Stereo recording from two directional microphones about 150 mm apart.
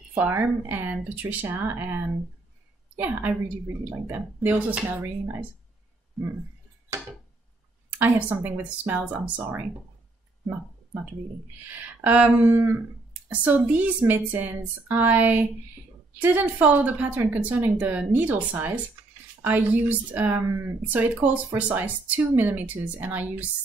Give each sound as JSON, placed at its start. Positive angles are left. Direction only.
{"t": 0.1, "sound": "speech", "side_deg": -15}
{"t": 8.0, "sound": "speech", "side_deg": -10}
{"t": 10.4, "sound": "a sound", "side_deg": -15}
{"t": 11.6, "sound": "speech", "side_deg": -10}